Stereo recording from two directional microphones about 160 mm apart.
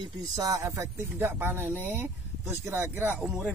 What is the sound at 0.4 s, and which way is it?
Speech, 20° right (ahead or behind).